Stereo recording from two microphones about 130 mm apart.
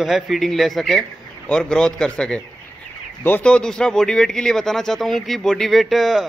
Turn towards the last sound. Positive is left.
turn(degrees=0)  # may be behind; listen again after turning